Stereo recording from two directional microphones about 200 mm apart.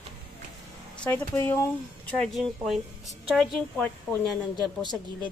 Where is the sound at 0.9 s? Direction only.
5° left (ahead or behind).